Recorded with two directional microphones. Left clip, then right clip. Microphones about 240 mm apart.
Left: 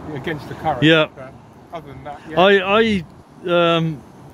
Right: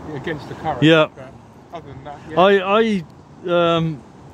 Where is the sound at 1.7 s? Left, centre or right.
Centre.